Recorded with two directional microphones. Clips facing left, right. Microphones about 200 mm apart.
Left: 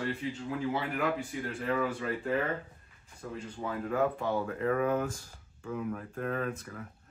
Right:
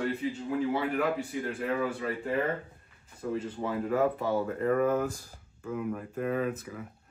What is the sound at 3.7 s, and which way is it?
Speech, 5° right (ahead or behind).